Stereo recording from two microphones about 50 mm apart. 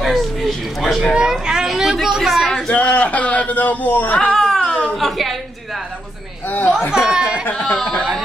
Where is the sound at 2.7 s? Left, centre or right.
Left.